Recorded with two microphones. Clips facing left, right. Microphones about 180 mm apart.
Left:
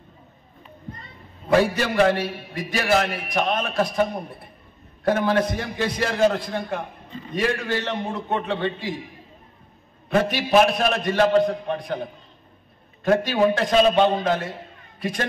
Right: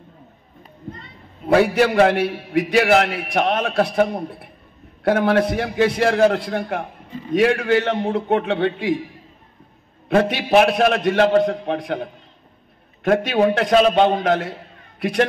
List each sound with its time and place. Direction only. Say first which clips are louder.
1.6 s a man's voice: right 5 dB; 75° right (ahead or behind)
5.0 s a man's voice: right 4 dB; 70° right (ahead or behind)
10.0 s a man's voice: right 4 dB; 65° right (ahead or behind)
13.0 s a man's voice: right 2 dB; 65° right (ahead or behind)